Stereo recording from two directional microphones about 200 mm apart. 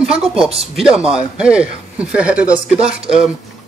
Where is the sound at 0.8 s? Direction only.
5° right (ahead or behind).